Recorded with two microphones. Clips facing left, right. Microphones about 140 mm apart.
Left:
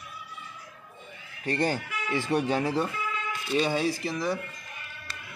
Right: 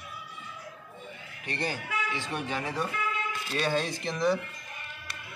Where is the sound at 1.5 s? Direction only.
45° left (ahead or behind).